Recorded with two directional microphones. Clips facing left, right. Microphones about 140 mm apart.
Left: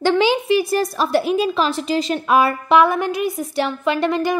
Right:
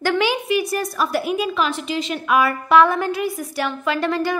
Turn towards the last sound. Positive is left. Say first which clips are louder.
# left 2 dB
turn(degrees=20)  # may be behind; listen again after turning